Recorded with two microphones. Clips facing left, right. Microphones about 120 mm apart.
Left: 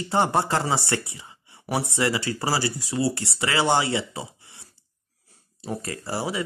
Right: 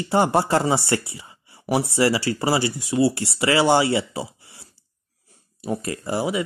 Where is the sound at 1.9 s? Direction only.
30° right (ahead or behind).